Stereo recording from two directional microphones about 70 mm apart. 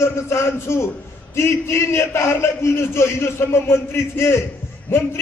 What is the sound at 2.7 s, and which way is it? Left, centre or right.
A man's voice, left.